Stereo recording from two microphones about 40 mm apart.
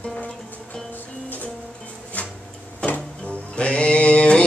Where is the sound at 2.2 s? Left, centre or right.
Left.